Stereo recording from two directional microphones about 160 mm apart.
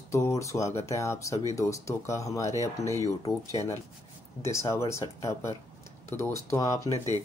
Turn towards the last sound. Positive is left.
turn(degrees=20)  # may be behind; listen again after turning